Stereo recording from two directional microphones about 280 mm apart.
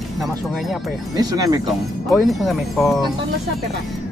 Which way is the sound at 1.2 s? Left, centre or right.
Centre.